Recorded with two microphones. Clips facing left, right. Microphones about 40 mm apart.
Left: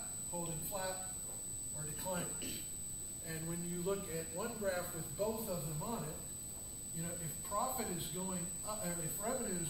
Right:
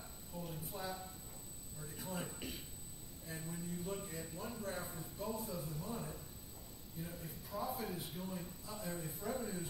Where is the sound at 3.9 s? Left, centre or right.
Centre.